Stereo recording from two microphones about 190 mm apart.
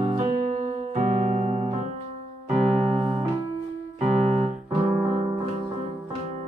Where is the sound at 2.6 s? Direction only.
35° right (ahead or behind).